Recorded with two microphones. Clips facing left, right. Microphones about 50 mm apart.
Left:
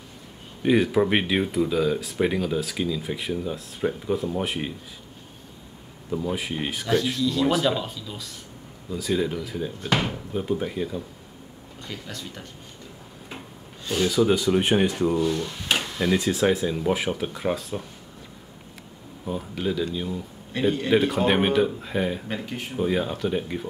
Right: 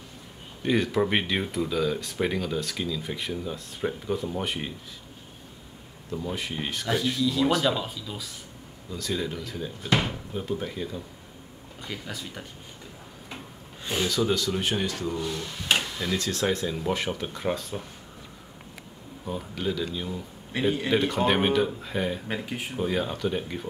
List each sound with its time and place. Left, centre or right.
0.6 s speech: centre
6.0 s speech: centre
6.9 s speech: centre
8.9 s speech: centre
11.8 s speech: centre
14.0 s speech: centre
15.4 s a sound: centre
16.0 s speech: centre
19.2 s speech: centre
20.5 s a man's voice: centre
20.9 s speech: centre
22.3 s speech: centre